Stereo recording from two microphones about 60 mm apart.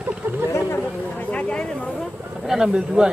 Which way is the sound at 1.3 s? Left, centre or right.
Left.